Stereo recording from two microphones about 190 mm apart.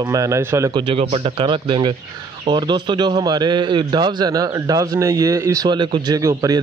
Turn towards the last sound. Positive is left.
turn(degrees=-20)  # may be behind; listen again after turning